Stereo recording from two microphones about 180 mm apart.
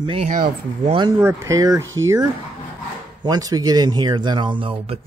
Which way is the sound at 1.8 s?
90° right.